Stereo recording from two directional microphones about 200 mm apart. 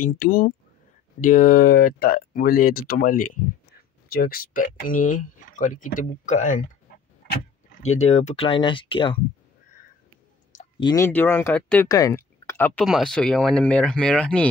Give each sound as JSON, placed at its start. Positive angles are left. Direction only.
{"t": 0.0, "sound": "speech", "side_deg": 50}
{"t": 7.8, "sound": "speech", "side_deg": 35}
{"t": 10.8, "sound": "speech", "side_deg": 20}
{"t": 11.1, "sound": "speech", "side_deg": 10}